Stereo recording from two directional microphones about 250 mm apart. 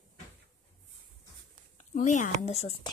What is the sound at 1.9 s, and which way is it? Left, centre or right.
Speech, left.